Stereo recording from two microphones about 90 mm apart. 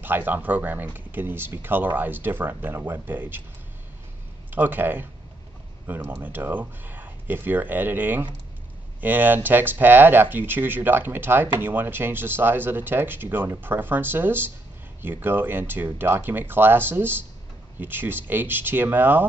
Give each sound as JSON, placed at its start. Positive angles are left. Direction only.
{"t": 0.0, "sound": "speech", "side_deg": -20}
{"t": 4.5, "sound": "speech", "side_deg": -20}